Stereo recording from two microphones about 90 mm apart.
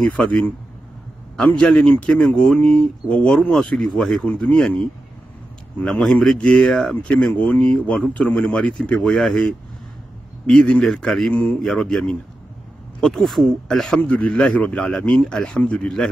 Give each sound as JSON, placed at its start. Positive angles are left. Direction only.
{"t": 0.0, "sound": "speech", "side_deg": 15}
{"t": 14.0, "sound": "speech", "side_deg": 15}